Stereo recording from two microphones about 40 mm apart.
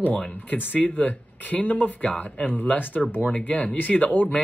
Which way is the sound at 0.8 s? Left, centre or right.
Left.